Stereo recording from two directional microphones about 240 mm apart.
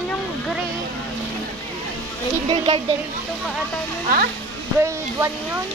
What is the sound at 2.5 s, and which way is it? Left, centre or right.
Speech, centre.